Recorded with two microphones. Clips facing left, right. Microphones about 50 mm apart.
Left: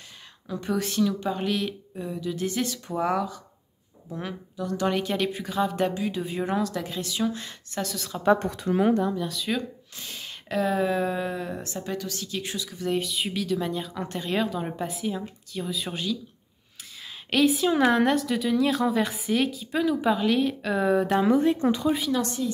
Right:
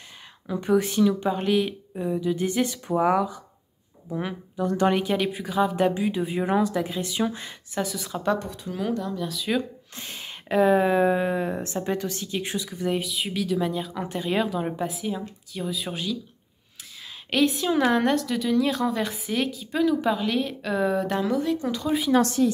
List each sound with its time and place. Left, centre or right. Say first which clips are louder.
0.5 s speech: right 6 dB; centre
4.6 s speech: right 4 dB; right
5.0 s speech: right 2 dB; centre
8.4 s speech: left 5 dB; left
8.7 s speech: left 6 dB; left
9.2 s speech: right 2 dB; centre
9.9 s speech: right 4 dB; right
13.0 s speech: right 1 dB; centre
17.3 s speech: left 1 dB; centre
21.2 s speech: left 4 dB; left
21.8 s speech: even; centre
22.2 s a woman's voice: right 7 dB; right